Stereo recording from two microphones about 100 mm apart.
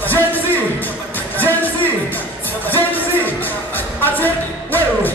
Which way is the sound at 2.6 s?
20° left (ahead or behind).